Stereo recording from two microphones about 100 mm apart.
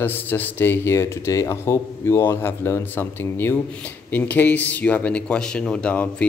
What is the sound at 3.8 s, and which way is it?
Speech, 20° left (ahead or behind).